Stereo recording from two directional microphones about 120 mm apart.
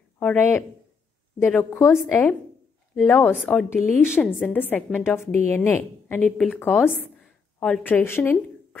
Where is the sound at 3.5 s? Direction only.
10° left (ahead or behind).